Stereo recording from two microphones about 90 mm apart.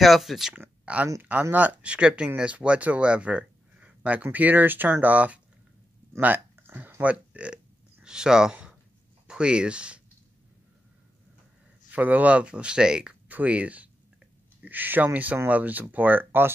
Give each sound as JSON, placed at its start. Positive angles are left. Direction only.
{"t": 0.0, "sound": "speech", "side_deg": 0}
{"t": 0.6, "sound": "a sound", "side_deg": -15}
{"t": 1.4, "sound": "speech", "side_deg": -20}
{"t": 6.1, "sound": "burping", "side_deg": -25}
{"t": 9.3, "sound": "speech", "side_deg": -10}
{"t": 11.9, "sound": "speech", "side_deg": -20}